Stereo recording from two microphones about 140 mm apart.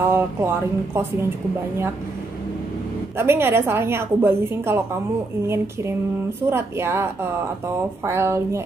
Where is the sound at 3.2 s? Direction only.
15° right (ahead or behind).